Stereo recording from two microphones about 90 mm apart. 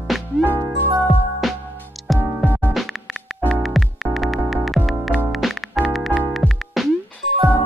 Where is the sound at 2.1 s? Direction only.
20° right (ahead or behind).